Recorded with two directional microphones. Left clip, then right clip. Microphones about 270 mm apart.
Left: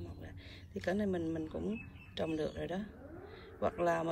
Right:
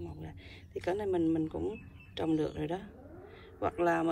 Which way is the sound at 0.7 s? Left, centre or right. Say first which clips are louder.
Right 4 dB; centre.